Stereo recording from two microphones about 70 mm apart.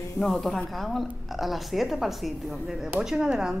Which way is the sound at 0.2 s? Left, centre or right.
Centre.